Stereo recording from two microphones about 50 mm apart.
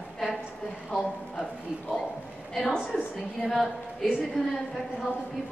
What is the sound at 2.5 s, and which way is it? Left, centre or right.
A woman's voice, centre.